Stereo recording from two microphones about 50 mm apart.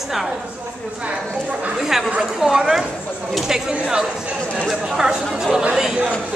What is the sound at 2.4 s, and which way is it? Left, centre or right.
Speech, centre.